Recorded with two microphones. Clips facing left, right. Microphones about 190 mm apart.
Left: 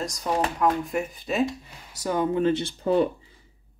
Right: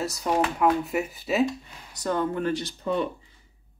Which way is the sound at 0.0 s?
5° right (ahead or behind).